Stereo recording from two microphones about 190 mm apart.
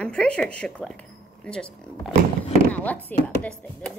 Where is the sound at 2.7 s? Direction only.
10° left (ahead or behind).